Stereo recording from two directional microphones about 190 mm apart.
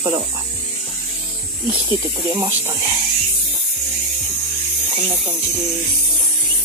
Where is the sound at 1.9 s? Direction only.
20° right (ahead or behind).